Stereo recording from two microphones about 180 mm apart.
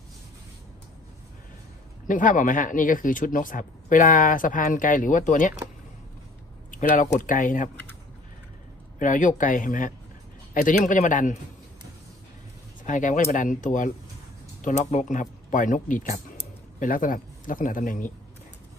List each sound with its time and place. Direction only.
2.0 s speech: 45° left (ahead or behind)
6.7 s speech: 45° left (ahead or behind)
9.0 s speech: 45° left (ahead or behind)
12.8 s speech: 45° left (ahead or behind)